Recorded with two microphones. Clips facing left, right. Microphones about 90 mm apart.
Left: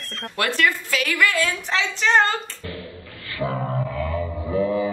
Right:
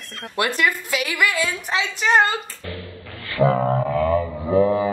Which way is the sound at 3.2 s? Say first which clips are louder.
Right 8 dB; 60° right (ahead or behind).